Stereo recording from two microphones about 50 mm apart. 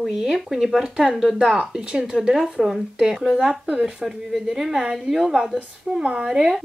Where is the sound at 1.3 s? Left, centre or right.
Right; by 6.6 s centre.